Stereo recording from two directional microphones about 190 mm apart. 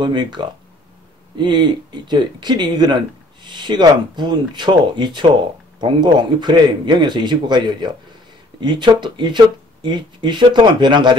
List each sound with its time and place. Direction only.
0.0 s speech: 25° right (ahead or behind)